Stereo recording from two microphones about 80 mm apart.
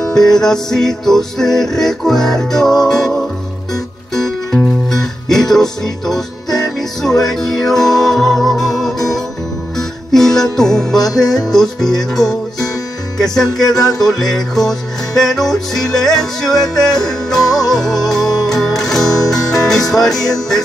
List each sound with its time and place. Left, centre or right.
0.1 s music: centre
10.1 s music: centre
11.1 s music: left
11.5 s music: centre